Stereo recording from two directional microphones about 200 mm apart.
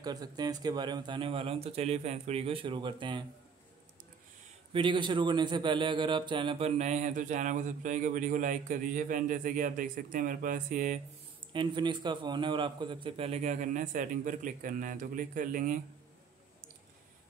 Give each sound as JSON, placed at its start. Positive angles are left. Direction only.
{"t": 0.0, "sound": "speech", "side_deg": -20}
{"t": 4.7, "sound": "a man's voice", "side_deg": -25}
{"t": 11.5, "sound": "a man's voice", "side_deg": -25}